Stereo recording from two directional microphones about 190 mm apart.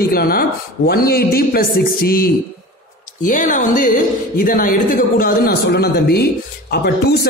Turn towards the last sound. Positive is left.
turn(degrees=55)  # may be behind; listen again after turning